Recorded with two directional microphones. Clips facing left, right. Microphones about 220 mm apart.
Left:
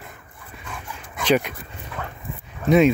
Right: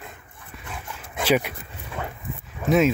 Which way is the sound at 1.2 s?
5° right (ahead or behind).